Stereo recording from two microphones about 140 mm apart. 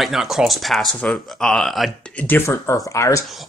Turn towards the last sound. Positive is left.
turn(degrees=20)  # may be behind; listen again after turning